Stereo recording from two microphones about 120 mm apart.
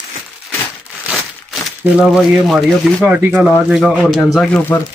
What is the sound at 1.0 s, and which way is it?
Crumpling, centre (ahead or behind).